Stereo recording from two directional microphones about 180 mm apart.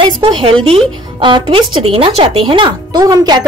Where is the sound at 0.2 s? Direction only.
30° right (ahead or behind).